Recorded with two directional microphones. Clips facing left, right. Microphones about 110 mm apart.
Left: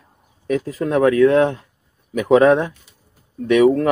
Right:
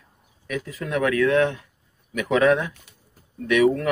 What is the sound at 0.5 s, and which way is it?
Speech, 35° left (ahead or behind).